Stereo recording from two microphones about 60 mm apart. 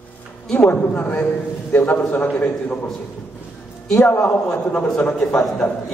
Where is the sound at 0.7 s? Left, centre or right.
Left.